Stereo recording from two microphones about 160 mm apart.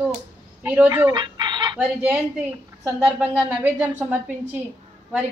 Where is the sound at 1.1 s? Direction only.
30° right (ahead or behind).